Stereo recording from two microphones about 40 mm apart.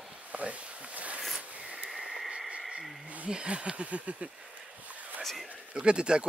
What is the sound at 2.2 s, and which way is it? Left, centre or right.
Radio, centre.